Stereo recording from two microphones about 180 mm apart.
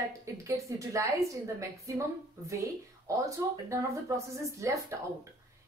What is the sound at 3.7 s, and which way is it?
A woman's voice, 15° right (ahead or behind).